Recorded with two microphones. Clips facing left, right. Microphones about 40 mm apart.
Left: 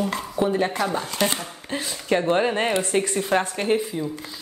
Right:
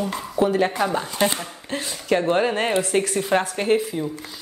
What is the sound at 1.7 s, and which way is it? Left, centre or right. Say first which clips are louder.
Speech: right 1 dB; centre.